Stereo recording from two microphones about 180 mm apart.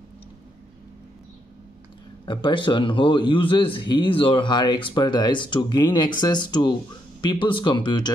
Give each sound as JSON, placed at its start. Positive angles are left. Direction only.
{"t": 2.2, "sound": "a man's voice", "side_deg": 25}